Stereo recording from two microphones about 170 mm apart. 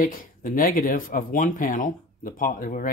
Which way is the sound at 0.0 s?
55° left (ahead or behind).